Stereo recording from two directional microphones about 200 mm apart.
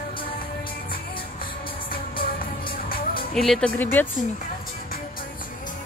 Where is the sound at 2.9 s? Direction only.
45° left (ahead or behind).